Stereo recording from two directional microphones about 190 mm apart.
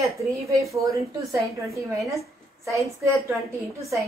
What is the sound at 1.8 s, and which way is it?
A woman's voice, 15° right (ahead or behind).